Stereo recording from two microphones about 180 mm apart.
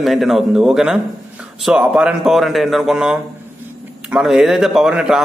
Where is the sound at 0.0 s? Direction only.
Centre (ahead or behind).